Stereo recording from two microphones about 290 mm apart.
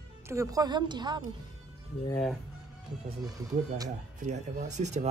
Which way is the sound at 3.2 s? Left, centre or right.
Centre.